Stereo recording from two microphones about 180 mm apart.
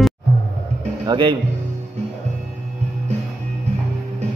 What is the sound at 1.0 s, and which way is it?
Music, 25° right (ahead or behind).